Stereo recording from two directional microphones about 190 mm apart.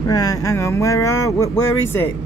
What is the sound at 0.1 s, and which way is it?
Speech, 20° left (ahead or behind).